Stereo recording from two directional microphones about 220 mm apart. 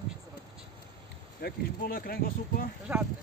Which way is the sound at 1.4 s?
40° left (ahead or behind).